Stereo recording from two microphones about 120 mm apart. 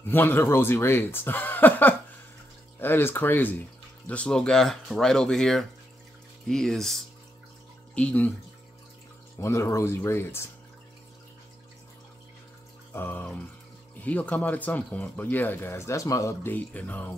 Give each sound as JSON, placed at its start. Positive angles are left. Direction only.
{"t": 0.1, "sound": "speech", "side_deg": 15}
{"t": 9.4, "sound": "speech", "side_deg": 25}
{"t": 12.9, "sound": "speech", "side_deg": 15}
{"t": 16.5, "sound": "speech", "side_deg": 15}